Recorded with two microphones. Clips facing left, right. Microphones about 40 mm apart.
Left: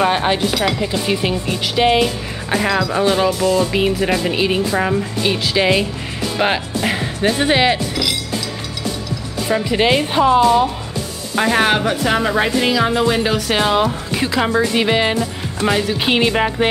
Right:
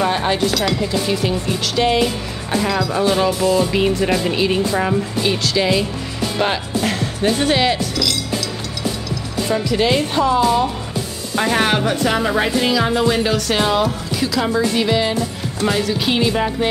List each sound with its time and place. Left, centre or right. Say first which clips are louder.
0.0 s a woman's voice: left 2 dB; left
3.3 s music: even; centre
3.7 s a woman's voice: even; centre
9.5 s speech: left 2 dB; left
10.4 s a woman's voice: left 3 dB; centre
14.2 s speech: left 1 dB; left
15.6 s a woman's voice: left 1 dB; centre
16.1 s speech: left 3 dB; left